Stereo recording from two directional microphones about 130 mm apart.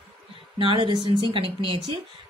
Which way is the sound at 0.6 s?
40° right (ahead or behind).